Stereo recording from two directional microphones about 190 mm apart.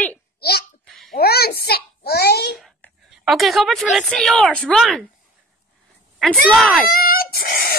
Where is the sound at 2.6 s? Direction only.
Centre (ahead or behind).